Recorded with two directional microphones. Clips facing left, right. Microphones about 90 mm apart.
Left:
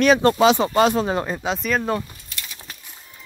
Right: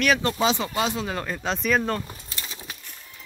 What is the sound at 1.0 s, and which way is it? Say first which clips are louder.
Speech: left 6 dB; 25° left (ahead or behind).